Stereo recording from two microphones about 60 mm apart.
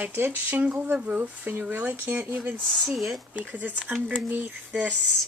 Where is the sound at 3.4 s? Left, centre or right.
Right.